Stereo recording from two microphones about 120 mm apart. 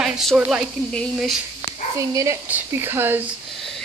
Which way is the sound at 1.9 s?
25° right (ahead or behind).